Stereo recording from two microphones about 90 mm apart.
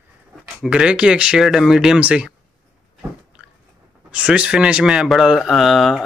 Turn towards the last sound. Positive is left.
turn(degrees=0)  # may be behind; listen again after turning